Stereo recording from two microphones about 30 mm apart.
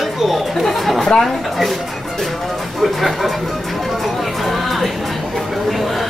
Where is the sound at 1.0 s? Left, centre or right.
Centre.